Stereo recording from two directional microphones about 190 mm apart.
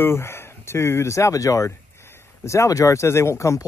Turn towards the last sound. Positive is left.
turn(degrees=15)  # may be behind; listen again after turning